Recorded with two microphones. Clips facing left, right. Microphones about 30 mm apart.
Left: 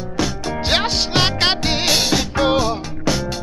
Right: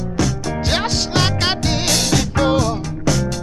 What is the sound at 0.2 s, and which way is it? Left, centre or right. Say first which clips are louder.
Music: right 1 dB; left.